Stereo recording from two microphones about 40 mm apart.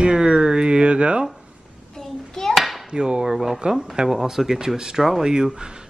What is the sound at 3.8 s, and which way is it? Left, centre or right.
Speech, centre.